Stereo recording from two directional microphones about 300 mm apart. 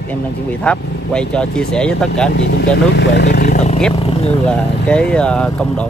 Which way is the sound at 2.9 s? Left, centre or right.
Left.